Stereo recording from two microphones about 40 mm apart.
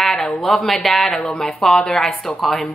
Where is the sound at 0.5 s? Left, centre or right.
Centre.